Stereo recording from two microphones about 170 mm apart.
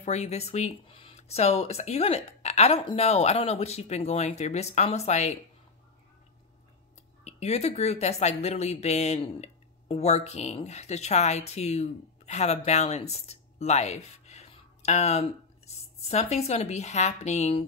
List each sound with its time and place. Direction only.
0.0 s speech: 40° left (ahead or behind)
7.2 s speech: 40° left (ahead or behind)